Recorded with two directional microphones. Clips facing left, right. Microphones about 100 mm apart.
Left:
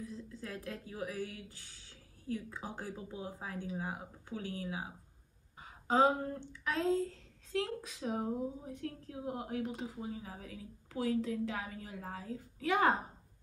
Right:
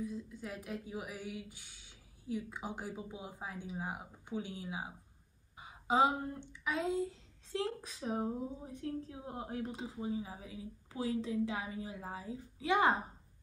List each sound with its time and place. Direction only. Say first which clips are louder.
0.0 s speech: right 3 dB; 15° right (ahead or behind)
7.5 s speech: left 1 dB; 25° right (ahead or behind)